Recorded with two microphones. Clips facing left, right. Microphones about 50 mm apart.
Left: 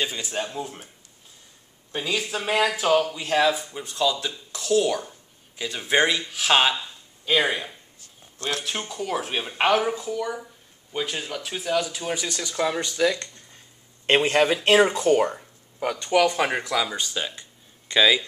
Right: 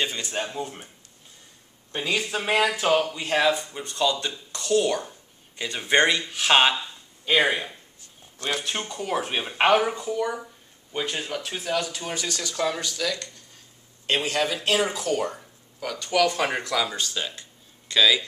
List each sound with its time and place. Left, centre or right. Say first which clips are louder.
0.0 s speech: even; centre
1.9 s speech: even; centre; by 15.3 s left
15.3 s speech: left 3 dB; left; by 16.9 s centre
16.9 s speech: left 1 dB; centre